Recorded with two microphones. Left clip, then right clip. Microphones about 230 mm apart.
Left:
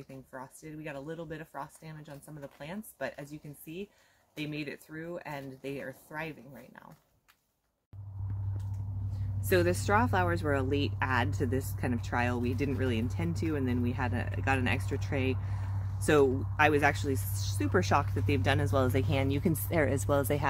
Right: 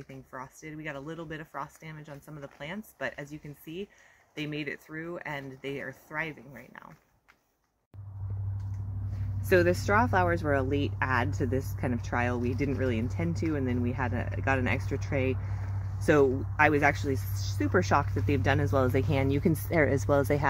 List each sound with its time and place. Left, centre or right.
0.3 s speech: centre
9.5 s speech: right